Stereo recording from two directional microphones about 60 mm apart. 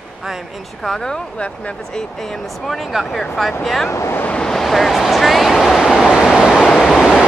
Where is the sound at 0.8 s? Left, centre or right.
Centre.